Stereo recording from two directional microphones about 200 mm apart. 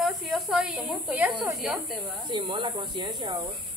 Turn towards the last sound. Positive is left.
turn(degrees=-25)  # may be behind; listen again after turning